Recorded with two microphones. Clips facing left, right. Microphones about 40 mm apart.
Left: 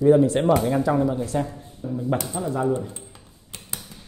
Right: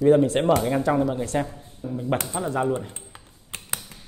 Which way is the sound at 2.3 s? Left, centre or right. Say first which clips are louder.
Left 1 dB; right.